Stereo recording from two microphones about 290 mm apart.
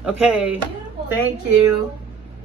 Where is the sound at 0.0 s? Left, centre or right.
Centre.